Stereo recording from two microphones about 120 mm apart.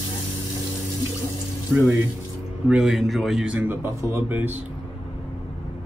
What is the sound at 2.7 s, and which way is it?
A man's voice, centre (ahead or behind).